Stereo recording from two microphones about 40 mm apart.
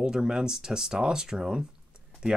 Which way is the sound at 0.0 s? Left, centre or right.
Centre.